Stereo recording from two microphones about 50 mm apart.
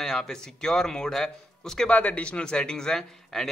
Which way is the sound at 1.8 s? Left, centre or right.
Left.